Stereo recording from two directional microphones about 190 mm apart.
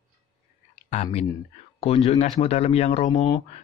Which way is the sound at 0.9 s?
35° left (ahead or behind).